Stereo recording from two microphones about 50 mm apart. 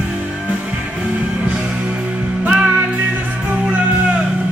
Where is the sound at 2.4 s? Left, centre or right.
Right.